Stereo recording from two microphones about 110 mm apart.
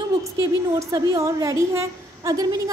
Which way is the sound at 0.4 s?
30° right (ahead or behind).